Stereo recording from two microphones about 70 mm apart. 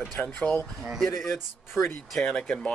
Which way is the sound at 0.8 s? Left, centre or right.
Centre.